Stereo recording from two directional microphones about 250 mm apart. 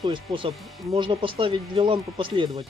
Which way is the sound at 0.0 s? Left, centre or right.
Centre.